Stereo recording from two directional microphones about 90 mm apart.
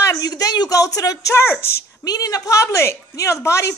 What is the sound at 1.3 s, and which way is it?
Speech, 25° left (ahead or behind).